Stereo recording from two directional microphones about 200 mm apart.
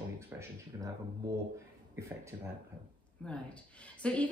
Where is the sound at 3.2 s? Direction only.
5° left (ahead or behind).